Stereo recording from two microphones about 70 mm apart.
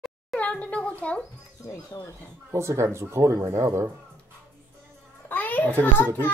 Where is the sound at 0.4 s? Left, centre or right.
Centre.